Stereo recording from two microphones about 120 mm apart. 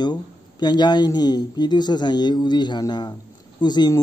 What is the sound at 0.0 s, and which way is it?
Speech, 35° left (ahead or behind).